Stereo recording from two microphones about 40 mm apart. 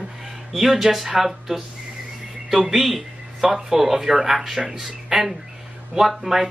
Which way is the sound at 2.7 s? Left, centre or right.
Centre.